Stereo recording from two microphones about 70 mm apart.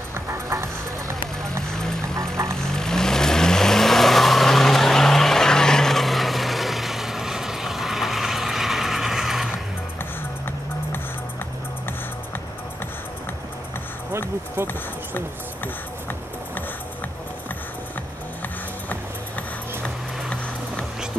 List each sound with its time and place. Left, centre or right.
0.1 s music: right
1.7 s vehicle: centre
14.7 s music: left
18.9 s music: left